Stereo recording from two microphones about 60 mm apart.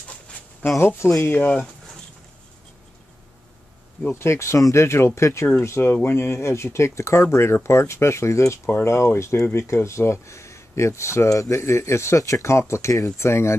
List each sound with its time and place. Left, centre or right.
0.7 s speech: left
4.1 s speech: left
5.6 s speech: left